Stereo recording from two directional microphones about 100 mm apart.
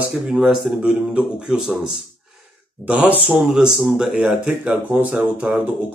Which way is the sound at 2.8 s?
10° right (ahead or behind).